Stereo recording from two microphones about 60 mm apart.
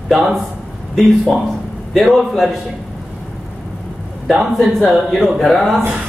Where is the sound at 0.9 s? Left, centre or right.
Centre.